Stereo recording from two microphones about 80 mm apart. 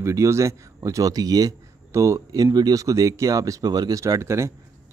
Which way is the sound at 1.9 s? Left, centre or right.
Right.